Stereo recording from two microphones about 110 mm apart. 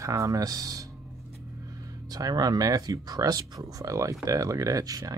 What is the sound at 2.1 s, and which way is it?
Speech, 35° right (ahead or behind).